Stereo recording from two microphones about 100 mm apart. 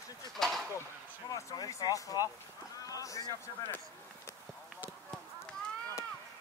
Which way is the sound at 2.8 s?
35° left (ahead or behind).